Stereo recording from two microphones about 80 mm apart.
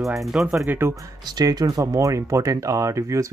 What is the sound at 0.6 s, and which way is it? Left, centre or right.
Speech, right.